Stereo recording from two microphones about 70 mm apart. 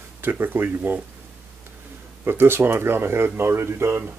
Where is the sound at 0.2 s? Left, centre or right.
Right.